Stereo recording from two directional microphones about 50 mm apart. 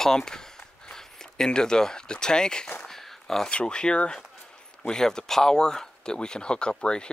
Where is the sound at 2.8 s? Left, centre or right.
Centre.